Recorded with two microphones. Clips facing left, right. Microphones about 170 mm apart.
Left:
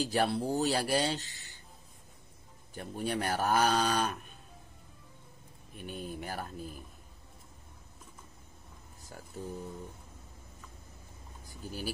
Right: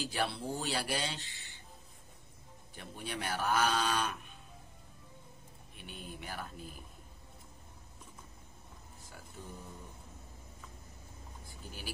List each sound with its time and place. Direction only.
0.0 s speech: 40° left (ahead or behind)
2.7 s speech: 40° left (ahead or behind)
5.8 s speech: 45° left (ahead or behind)
11.4 s vehicle: 40° left (ahead or behind)